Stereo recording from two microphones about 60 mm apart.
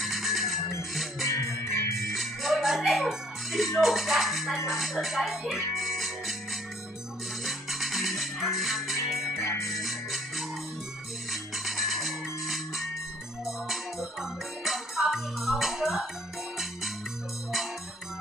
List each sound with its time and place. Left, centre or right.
0.0 s music: centre
1.2 s music: left
2.0 s music: centre
4.6 s speech: centre
5.5 s music: centre
7.4 s music: centre
11.5 s music: centre